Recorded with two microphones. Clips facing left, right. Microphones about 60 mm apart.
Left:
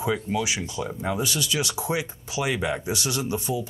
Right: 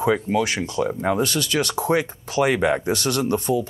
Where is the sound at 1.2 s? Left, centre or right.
Centre.